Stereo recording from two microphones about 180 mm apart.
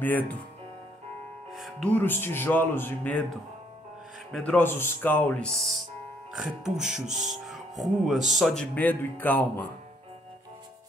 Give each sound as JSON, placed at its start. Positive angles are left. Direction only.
{"t": 0.0, "sound": "music", "side_deg": 10}
{"t": 1.5, "sound": "music", "side_deg": 0}
{"t": 4.3, "sound": "music", "side_deg": 5}
{"t": 6.3, "sound": "speech", "side_deg": -5}
{"t": 7.1, "sound": "music", "side_deg": -40}
{"t": 7.4, "sound": "speech", "side_deg": 0}